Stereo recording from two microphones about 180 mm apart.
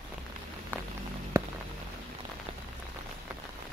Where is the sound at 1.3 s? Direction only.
15° right (ahead or behind).